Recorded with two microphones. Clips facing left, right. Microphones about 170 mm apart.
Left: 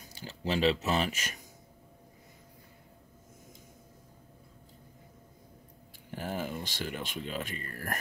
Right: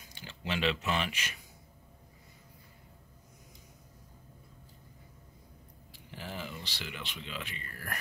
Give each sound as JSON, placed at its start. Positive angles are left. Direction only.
{"t": 0.0, "sound": "speech", "side_deg": 40}
{"t": 6.1, "sound": "speech", "side_deg": 50}